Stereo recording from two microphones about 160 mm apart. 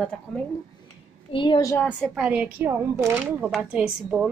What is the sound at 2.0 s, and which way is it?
A woman's voice, 5° right (ahead or behind).